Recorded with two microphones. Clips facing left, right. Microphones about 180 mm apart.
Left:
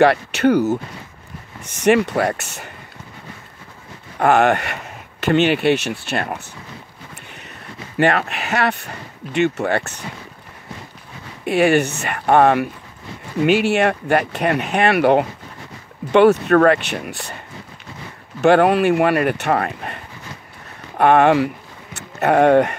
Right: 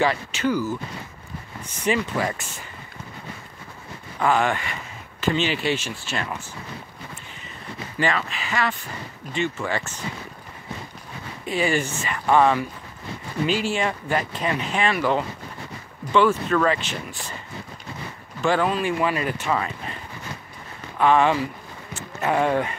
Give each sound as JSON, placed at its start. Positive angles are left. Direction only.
{"t": 0.0, "sound": "speech", "side_deg": 65}
{"t": 1.6, "sound": "speech", "side_deg": 80}
{"t": 4.2, "sound": "speech", "side_deg": 65}
{"t": 7.2, "sound": "a sound", "side_deg": 65}
{"t": 8.0, "sound": "speech", "side_deg": 65}
{"t": 11.4, "sound": "speech", "side_deg": 70}
{"t": 18.4, "sound": "speech", "side_deg": 65}
{"t": 21.0, "sound": "speech", "side_deg": 65}